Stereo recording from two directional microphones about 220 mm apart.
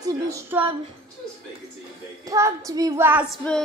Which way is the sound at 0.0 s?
15° right (ahead or behind).